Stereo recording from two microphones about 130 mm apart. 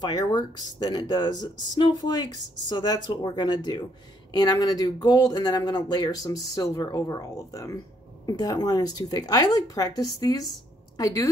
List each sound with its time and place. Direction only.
0.0 s a woman's voice: 30° left (ahead or behind)